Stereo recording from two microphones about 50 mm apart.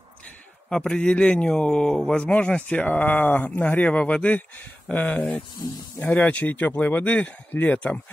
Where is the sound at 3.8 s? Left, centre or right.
Left.